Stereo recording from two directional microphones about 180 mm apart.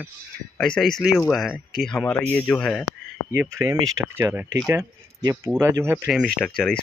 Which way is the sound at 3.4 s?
15° right (ahead or behind).